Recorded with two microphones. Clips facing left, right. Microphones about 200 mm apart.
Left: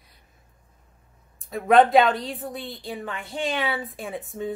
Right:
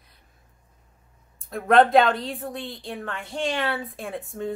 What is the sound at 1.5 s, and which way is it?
A woman's voice, centre (ahead or behind).